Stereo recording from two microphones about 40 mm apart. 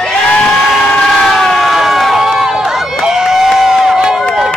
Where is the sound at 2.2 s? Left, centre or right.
Centre.